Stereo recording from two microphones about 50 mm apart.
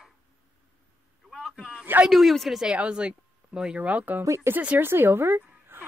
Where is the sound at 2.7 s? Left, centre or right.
Right.